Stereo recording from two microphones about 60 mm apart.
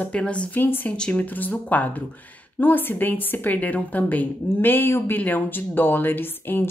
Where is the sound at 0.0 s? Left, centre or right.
Centre.